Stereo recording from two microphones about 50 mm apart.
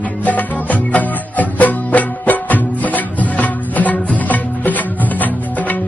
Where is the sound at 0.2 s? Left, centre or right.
Left.